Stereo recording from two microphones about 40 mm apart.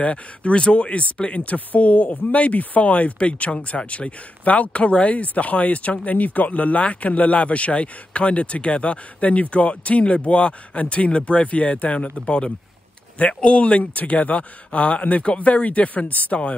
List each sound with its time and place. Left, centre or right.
0.0 s speech: left